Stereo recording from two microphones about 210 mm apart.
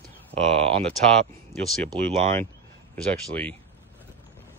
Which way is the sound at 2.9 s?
5° left (ahead or behind).